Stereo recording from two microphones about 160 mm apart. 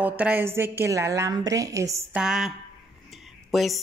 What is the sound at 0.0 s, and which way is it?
A woman's voice, 10° right (ahead or behind).